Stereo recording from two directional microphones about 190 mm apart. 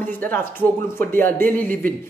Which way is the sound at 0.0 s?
10° left (ahead or behind).